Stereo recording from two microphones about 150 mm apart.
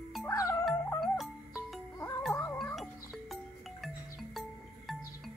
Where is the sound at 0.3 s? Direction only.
20° left (ahead or behind).